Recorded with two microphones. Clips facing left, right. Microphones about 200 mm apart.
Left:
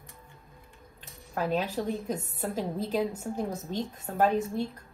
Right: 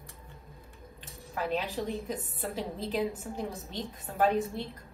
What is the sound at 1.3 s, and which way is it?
A woman's voice, 45° left (ahead or behind).